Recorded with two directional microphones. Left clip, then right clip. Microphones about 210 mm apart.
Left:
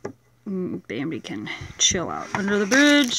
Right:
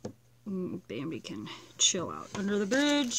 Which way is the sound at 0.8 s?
Centre (ahead or behind).